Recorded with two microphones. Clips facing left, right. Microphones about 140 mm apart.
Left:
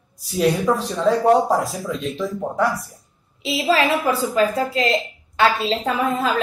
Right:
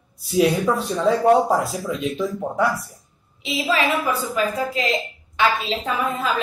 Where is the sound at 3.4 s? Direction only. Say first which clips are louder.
Left 3 dB; 35° left (ahead or behind).